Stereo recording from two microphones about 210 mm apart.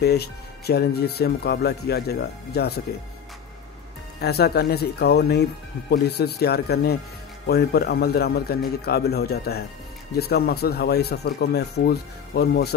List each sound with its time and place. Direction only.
0.0 s speech: 50° left (ahead or behind)
4.2 s speech: 50° left (ahead or behind)